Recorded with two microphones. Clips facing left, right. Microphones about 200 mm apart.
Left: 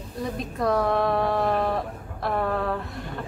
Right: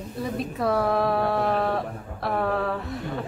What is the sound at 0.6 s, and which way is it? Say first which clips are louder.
A woman's voice: left 1 dB; 5° right (ahead or behind).